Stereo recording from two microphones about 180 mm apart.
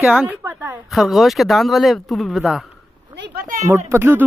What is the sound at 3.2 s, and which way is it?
Speech, 65° right (ahead or behind).